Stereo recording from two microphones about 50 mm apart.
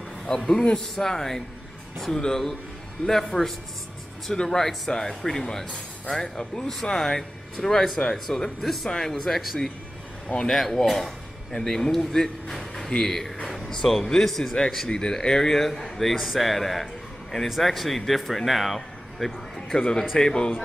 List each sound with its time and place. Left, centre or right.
0.3 s speech: centre
8.6 s speech: centre
10.2 s speech: left
10.5 s speech: centre
14.9 s speech: centre
18.8 s a sound: centre
19.8 s speech: centre